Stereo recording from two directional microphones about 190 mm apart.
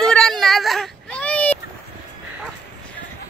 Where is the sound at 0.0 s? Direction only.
5° left (ahead or behind).